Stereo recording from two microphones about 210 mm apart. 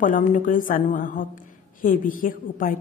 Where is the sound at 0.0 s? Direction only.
40° left (ahead or behind).